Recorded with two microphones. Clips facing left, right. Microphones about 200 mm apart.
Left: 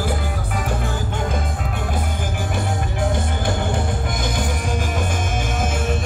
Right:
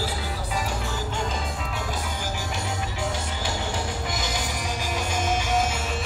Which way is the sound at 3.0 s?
55° left (ahead or behind).